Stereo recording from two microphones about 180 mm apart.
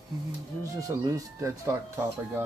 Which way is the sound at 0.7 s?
20° right (ahead or behind).